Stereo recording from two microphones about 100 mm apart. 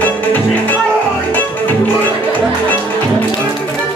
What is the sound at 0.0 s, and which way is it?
Music, 15° left (ahead or behind).